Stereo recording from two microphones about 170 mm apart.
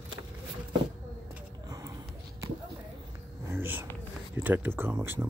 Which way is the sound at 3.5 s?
10° right (ahead or behind).